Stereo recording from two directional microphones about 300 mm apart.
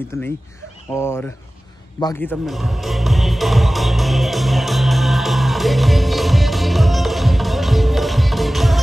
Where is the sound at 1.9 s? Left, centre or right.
Centre.